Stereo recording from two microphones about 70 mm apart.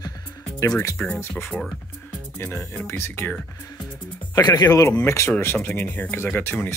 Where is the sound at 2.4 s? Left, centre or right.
Left.